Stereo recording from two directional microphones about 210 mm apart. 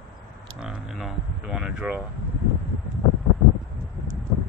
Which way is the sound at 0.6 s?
Centre (ahead or behind).